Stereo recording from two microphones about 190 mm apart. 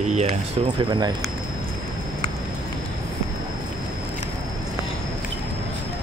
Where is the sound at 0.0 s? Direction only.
35° right (ahead or behind).